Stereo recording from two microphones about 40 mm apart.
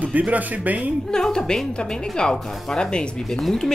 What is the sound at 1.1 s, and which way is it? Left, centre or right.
Speech, centre.